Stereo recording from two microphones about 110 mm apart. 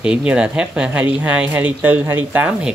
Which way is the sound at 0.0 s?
10° right (ahead or behind).